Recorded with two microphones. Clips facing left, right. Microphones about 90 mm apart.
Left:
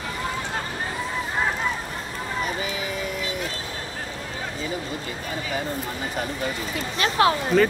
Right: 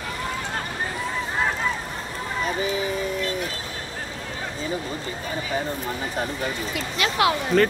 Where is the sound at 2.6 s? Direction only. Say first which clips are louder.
Right 4 dB; 35° right (ahead or behind).